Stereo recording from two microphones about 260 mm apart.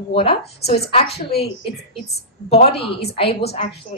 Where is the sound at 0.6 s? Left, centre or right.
Left.